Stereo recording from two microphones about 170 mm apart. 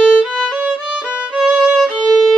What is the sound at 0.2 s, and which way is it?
Violin, 5° right (ahead or behind).